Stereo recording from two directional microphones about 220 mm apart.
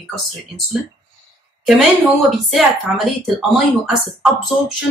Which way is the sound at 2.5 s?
Centre (ahead or behind).